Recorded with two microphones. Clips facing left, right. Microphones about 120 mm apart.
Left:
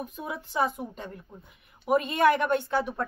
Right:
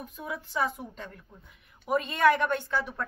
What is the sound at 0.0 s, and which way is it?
Speech, 15° left (ahead or behind).